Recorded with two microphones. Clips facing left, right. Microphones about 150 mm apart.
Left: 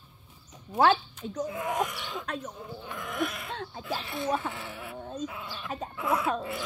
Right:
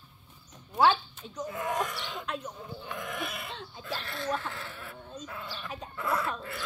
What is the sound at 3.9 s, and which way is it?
Speech, 15° left (ahead or behind).